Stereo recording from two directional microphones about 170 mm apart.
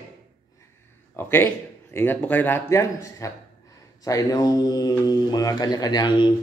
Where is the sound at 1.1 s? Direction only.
10° left (ahead or behind).